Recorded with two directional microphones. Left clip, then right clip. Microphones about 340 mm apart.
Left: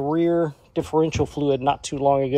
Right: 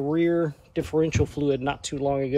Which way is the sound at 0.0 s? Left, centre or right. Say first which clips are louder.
Left 3 dB; centre.